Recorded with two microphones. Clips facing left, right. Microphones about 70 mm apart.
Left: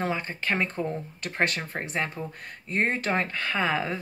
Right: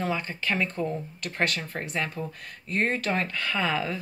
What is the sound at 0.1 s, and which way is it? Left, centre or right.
A woman's voice, left.